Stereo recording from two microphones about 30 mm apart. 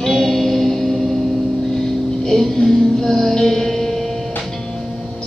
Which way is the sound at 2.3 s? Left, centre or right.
Centre.